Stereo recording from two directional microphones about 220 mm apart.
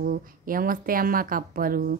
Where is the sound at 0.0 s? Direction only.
40° right (ahead or behind).